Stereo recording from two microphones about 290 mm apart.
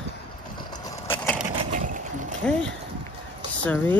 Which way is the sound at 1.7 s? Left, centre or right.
Right.